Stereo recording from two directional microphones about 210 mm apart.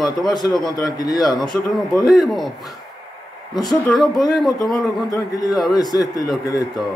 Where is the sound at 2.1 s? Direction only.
Centre (ahead or behind).